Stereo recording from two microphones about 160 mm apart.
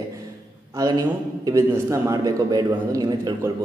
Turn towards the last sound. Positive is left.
turn(degrees=-25)  # may be behind; listen again after turning